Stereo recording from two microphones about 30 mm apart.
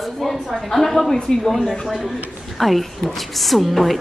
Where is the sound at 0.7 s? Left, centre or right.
Centre.